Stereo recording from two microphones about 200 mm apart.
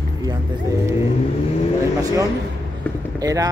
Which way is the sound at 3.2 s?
15° right (ahead or behind).